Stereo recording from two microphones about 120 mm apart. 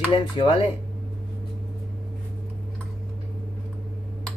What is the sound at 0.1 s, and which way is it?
Speech, 50° left (ahead or behind).